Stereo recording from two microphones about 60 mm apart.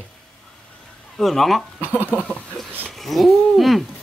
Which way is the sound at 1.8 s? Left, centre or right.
Right.